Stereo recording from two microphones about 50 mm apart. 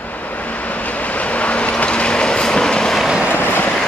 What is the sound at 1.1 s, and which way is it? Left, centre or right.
Vehicle, left.